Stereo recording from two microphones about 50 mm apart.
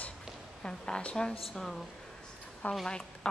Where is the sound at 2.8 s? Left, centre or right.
Centre.